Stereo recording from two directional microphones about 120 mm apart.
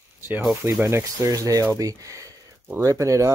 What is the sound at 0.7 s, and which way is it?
Speech, 20° right (ahead or behind).